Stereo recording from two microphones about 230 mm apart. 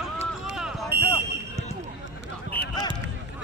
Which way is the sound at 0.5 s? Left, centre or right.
Centre.